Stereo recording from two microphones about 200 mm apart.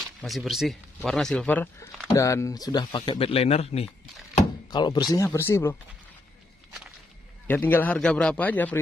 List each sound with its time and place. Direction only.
0.2 s speech: centre (ahead or behind)
7.4 s speech: 10° left (ahead or behind)